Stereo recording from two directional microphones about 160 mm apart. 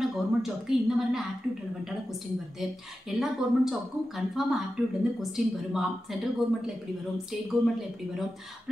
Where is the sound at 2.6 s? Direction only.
Centre (ahead or behind).